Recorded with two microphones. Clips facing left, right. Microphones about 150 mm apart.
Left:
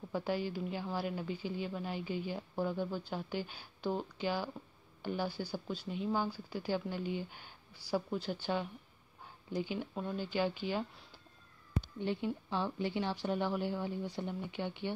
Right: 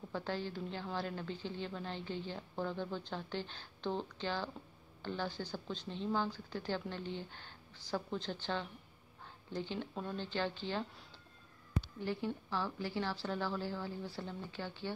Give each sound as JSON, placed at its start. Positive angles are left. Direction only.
{"t": 0.1, "sound": "a woman's voice", "side_deg": 10}
{"t": 12.0, "sound": "a woman's voice", "side_deg": 20}